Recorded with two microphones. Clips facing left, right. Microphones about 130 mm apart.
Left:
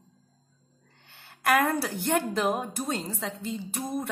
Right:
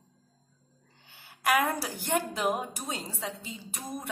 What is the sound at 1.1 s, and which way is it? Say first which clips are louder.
A woman's voice: left 2 dB; 10° right (ahead or behind).